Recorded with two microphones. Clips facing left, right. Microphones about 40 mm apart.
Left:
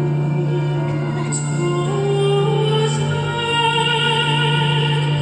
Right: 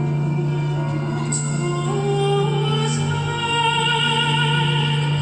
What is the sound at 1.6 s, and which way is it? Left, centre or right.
Music, left.